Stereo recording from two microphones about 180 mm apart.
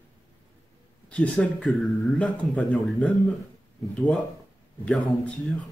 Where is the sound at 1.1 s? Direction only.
5° left (ahead or behind).